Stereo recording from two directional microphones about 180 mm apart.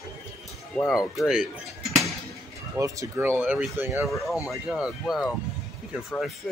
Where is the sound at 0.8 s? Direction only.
Centre (ahead or behind).